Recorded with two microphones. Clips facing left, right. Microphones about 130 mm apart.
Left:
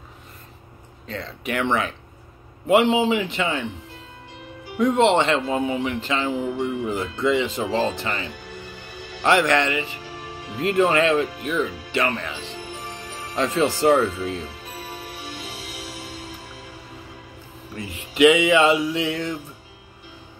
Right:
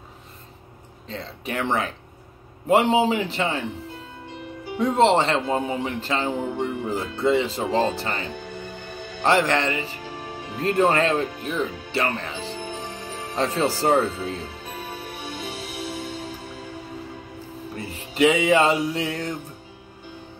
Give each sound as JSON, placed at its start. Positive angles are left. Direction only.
{"t": 1.0, "sound": "speech", "side_deg": -25}
{"t": 4.7, "sound": "speech", "side_deg": -35}
{"t": 17.7, "sound": "speech", "side_deg": -35}